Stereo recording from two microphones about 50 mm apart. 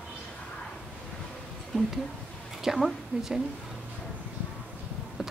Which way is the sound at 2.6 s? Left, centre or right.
Centre.